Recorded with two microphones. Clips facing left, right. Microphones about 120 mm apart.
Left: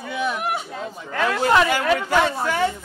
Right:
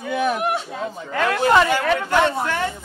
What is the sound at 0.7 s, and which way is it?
Speech, centre (ahead or behind).